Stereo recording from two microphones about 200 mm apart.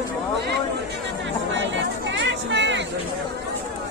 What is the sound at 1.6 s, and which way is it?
Speech, 65° right (ahead or behind).